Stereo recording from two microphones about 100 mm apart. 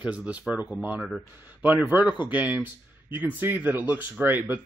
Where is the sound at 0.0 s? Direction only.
15° right (ahead or behind).